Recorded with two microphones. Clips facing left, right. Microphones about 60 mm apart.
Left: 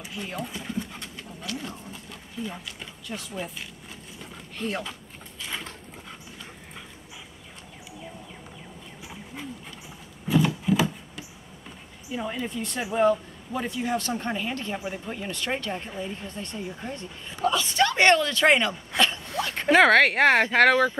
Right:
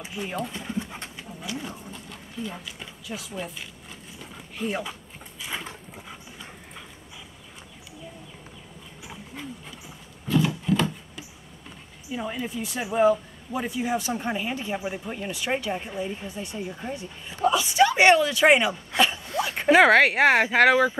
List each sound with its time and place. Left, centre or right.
0.0 s speech: centre
2.4 s speech: centre
4.2 s a sound: centre
9.0 s dog: centre
10.2 s wood: centre
12.1 s speech: centre
18.9 s a sound: centre